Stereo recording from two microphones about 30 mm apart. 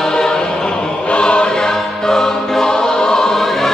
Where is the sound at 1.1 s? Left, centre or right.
Left.